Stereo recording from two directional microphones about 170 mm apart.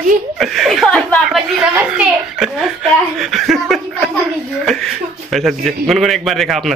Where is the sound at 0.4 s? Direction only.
Centre (ahead or behind).